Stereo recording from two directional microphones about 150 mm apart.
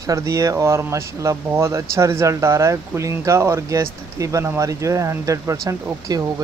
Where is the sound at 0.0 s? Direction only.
20° right (ahead or behind).